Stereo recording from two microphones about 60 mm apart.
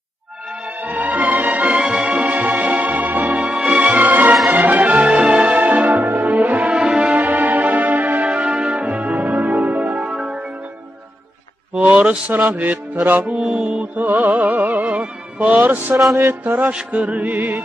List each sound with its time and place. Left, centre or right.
0.7 s music: right
2.0 s organ: right
3.3 s music: centre
3.6 s music: right
5.9 s music: right
6.7 s music: centre
7.2 s music: right
11.7 s a sound: right
12.4 s music: right
14.7 s music: right
16.2 s mantra: right
16.5 s music: right